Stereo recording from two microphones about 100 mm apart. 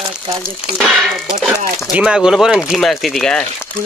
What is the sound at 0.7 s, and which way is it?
Speech, centre (ahead or behind).